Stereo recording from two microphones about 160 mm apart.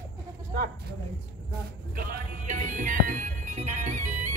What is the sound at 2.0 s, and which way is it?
Music, 60° right (ahead or behind).